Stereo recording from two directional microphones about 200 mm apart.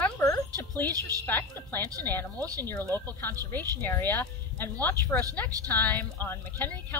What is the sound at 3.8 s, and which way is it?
Speech, 10° left (ahead or behind).